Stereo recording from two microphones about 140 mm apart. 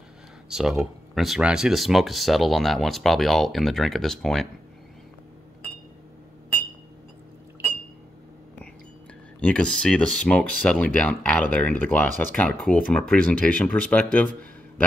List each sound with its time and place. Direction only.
0.5 s speech: 5° right (ahead or behind)
9.4 s speech: 5° left (ahead or behind)